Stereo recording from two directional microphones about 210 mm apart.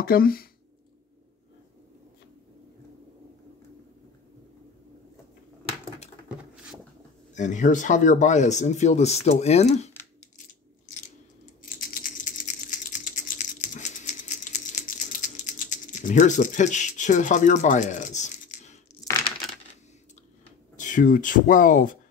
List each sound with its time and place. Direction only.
0.0 s speech: 45° left (ahead or behind)
6.2 s a sound: 5° right (ahead or behind)
7.3 s speech: 35° left (ahead or behind)
11.6 s typing: 40° left (ahead or behind)
19.1 s coin: 15° left (ahead or behind)
20.7 s speech: 35° left (ahead or behind)